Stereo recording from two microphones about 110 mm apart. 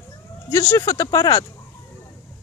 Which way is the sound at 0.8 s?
35° left (ahead or behind).